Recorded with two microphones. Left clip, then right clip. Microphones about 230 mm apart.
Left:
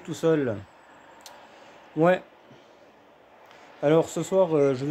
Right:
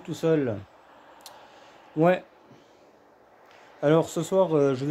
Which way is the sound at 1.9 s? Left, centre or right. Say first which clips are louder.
Left 1 dB; centre.